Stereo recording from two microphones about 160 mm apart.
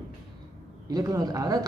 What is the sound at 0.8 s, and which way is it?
Speech, 25° right (ahead or behind).